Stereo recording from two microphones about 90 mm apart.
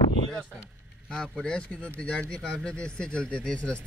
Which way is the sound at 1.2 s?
10° left (ahead or behind).